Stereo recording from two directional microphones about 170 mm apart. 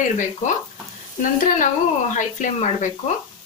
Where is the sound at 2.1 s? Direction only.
45° left (ahead or behind).